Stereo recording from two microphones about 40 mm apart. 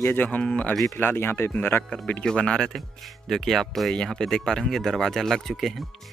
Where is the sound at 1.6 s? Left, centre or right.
Left.